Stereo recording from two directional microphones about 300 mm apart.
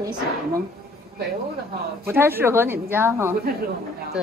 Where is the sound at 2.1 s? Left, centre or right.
Centre.